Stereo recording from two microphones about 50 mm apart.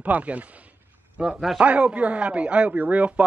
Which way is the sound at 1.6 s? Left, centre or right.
Right.